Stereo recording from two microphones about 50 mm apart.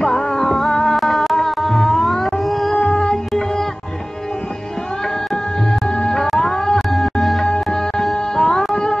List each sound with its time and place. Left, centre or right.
0.0 s music: centre
0.9 s music: centre
2.8 s music: centre
5.3 s music: centre
7.4 s music: centre